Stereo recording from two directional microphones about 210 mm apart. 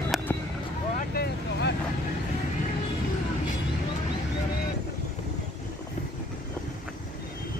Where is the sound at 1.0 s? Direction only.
50° left (ahead or behind).